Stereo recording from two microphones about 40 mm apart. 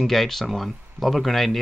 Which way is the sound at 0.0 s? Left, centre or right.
Centre.